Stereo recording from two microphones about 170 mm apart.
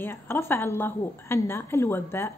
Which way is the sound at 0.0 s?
15° left (ahead or behind).